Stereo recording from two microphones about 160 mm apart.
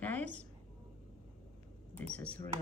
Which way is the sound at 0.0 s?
10° left (ahead or behind).